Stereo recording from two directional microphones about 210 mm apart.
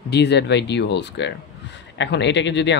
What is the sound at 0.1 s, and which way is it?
Speech, 55° left (ahead or behind).